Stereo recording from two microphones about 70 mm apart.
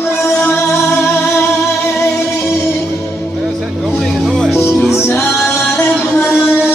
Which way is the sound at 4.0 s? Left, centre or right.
Centre.